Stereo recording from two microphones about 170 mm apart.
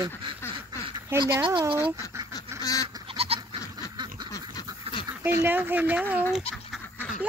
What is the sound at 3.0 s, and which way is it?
Goat, 35° right (ahead or behind).